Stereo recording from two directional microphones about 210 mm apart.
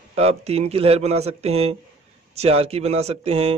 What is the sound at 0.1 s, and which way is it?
A man's voice, 30° right (ahead or behind).